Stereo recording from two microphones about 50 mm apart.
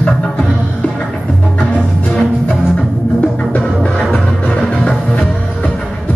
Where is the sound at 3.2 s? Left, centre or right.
Left.